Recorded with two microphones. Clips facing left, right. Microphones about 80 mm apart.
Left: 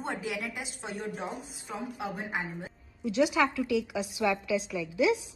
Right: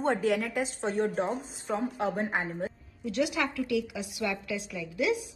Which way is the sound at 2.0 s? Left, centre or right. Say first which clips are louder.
Right 5 dB; right.